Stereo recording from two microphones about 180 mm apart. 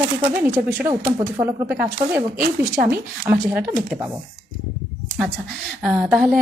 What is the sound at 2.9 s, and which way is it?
Speech, 10° right (ahead or behind).